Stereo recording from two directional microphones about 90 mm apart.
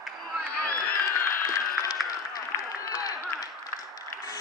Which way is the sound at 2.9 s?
45° left (ahead or behind).